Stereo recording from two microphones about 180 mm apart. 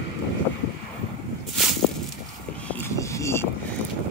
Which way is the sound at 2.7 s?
15° left (ahead or behind).